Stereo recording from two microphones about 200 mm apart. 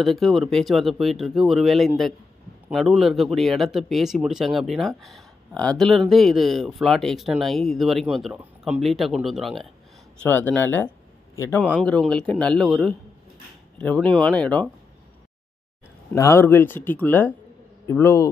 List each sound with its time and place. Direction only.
0.0 s speech: centre (ahead or behind)
16.1 s speech: 15° left (ahead or behind)